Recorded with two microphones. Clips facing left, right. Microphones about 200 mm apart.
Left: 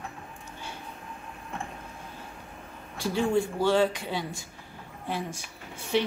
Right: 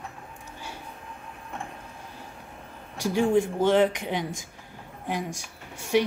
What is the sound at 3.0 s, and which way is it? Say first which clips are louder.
A man's voice: right 3 dB; 15° right (ahead or behind).